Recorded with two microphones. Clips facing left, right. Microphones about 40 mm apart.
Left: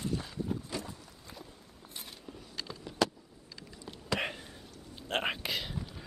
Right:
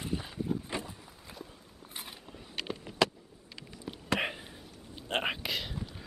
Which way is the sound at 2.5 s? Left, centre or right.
Right.